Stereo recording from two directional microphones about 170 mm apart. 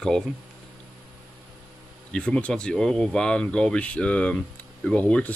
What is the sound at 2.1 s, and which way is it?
Speech, 5° left (ahead or behind).